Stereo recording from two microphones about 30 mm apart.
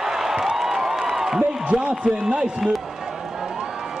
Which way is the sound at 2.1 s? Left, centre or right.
Right.